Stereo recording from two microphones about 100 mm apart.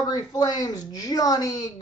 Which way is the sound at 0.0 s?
40° left (ahead or behind).